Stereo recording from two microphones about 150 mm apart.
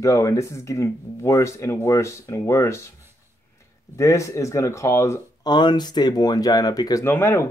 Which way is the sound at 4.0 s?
20° left (ahead or behind).